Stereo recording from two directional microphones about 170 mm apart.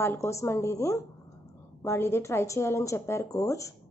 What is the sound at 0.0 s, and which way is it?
Speech, 15° left (ahead or behind).